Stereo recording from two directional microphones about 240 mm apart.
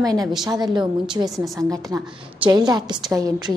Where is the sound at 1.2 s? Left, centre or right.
Centre.